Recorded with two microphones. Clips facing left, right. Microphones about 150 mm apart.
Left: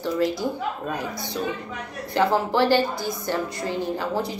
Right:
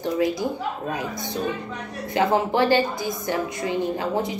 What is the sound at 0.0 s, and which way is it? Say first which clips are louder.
A woman's voice: right 1 dB; 20° right (ahead or behind).